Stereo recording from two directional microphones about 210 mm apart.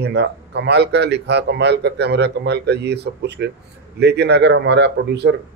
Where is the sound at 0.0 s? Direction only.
55° right (ahead or behind).